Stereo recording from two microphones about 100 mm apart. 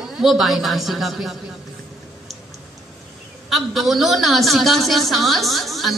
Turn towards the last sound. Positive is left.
turn(degrees=0)  # may be behind; listen again after turning